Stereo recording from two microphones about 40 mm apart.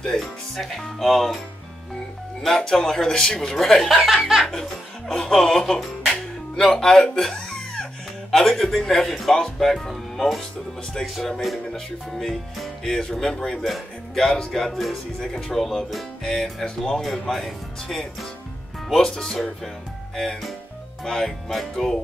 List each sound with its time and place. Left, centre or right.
0.0 s speech: centre
1.0 s speech: centre
2.6 s speech: centre
11.7 s speech: centre
19.0 s speech: centre